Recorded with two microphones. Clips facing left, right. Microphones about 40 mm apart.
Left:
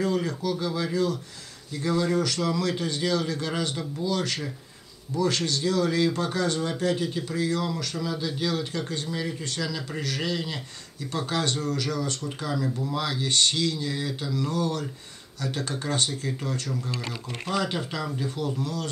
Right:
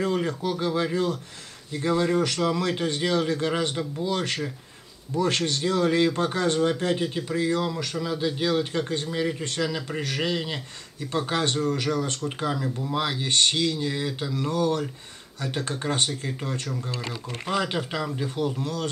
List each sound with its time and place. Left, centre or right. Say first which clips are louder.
0.0 s a man's voice: right 1 dB; right
12.6 s a man's voice: right 1 dB; centre
16.9 s speech: right 1 dB; centre
17.5 s a man's voice: right 1 dB; right